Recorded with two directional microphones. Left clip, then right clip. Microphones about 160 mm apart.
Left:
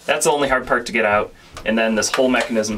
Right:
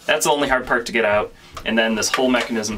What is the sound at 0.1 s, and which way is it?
Speech, 5° right (ahead or behind).